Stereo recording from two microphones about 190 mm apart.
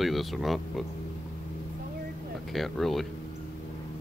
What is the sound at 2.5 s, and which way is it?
Speech, centre (ahead or behind).